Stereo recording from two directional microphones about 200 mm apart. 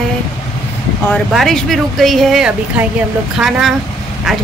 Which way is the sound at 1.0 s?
Centre (ahead or behind).